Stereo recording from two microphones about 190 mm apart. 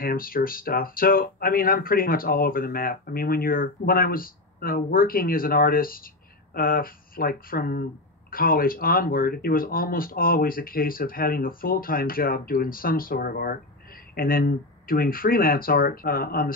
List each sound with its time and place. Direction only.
0.0 s speech: 50° left (ahead or behind)